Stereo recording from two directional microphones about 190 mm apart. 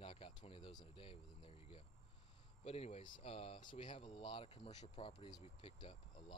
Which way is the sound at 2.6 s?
30° left (ahead or behind).